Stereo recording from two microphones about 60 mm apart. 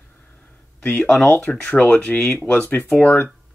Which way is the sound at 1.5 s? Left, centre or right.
Left.